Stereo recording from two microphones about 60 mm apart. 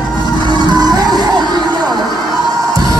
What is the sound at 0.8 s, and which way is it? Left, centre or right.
Music, right.